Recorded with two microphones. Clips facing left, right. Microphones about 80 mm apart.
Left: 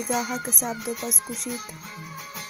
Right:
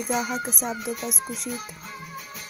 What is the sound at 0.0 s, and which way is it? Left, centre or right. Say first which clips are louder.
Music: even; centre.